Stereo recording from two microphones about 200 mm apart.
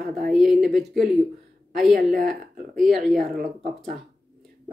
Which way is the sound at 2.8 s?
Centre (ahead or behind).